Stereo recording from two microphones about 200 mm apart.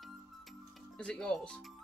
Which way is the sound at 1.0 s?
5° left (ahead or behind).